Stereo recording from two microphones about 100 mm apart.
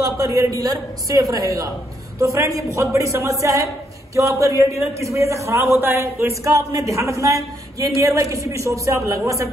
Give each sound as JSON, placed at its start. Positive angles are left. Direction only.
{"t": 0.0, "sound": "a man's voice", "side_deg": -35}